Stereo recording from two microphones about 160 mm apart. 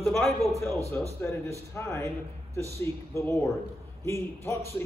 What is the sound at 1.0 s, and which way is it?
A man's voice, 10° left (ahead or behind).